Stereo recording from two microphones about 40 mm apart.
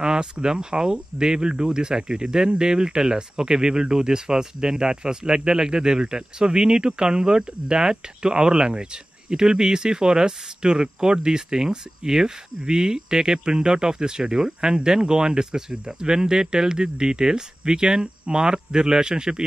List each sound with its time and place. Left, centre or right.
0.0 s speech: centre